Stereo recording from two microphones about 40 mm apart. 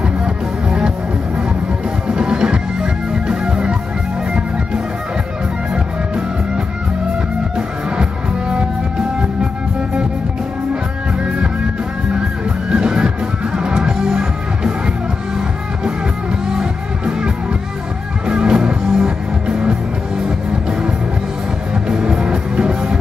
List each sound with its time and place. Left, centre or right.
0.7 s music: right
2.0 s music: right
8.0 s music: right
12.6 s music: right
16.5 s music: centre
21.8 s music: right